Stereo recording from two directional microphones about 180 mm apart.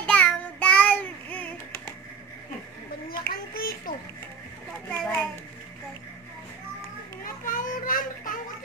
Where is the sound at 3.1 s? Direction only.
55° left (ahead or behind).